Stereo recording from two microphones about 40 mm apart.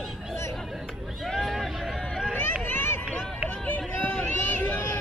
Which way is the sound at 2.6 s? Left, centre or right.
Left.